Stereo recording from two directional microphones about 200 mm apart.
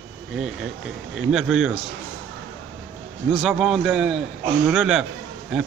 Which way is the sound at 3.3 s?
Centre (ahead or behind).